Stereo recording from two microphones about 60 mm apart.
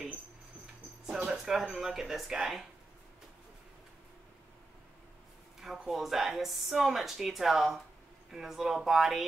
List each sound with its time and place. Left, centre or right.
1.0 s speech: centre
5.6 s speech: centre